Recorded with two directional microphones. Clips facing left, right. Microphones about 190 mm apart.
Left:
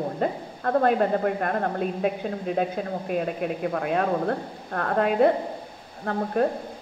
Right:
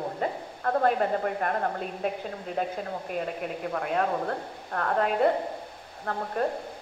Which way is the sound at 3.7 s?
50° left (ahead or behind).